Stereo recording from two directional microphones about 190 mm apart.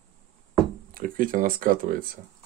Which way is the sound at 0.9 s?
45° right (ahead or behind).